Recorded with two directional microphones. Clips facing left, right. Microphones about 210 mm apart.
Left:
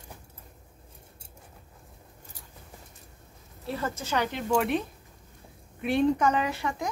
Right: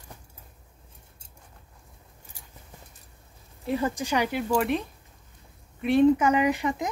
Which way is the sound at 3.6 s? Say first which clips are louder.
Right 6 dB; 15° right (ahead or behind).